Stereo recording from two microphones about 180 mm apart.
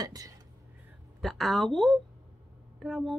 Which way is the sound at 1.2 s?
Centre (ahead or behind).